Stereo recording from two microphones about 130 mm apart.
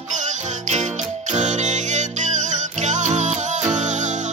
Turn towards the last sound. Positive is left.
turn(degrees=-70)  # may be behind; listen again after turning